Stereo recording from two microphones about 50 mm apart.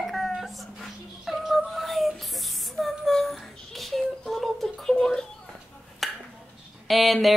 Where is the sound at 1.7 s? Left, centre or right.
Centre.